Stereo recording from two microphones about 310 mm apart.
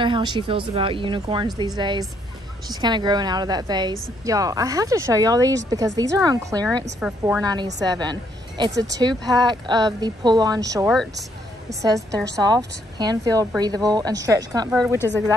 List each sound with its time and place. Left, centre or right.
0.0 s speech: centre
12.4 s speech: centre